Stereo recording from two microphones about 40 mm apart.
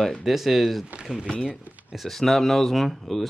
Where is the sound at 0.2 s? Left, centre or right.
Centre.